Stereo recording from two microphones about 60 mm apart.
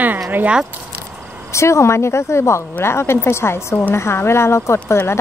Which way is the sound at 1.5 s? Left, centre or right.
Left.